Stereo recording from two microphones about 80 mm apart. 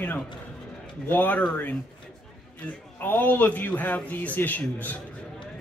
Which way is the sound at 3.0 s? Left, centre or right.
Left.